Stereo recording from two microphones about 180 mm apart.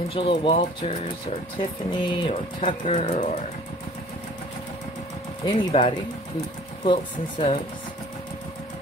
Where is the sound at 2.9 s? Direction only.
40° left (ahead or behind).